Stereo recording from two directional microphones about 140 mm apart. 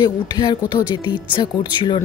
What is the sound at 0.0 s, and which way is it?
Speech, 30° left (ahead or behind).